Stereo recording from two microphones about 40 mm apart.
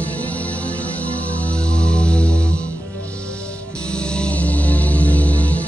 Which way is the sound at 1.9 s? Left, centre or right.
Left.